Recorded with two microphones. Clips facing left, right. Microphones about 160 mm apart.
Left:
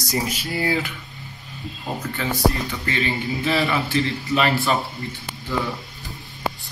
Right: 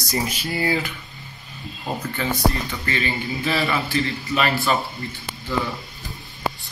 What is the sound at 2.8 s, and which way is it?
Speech, 20° left (ahead or behind).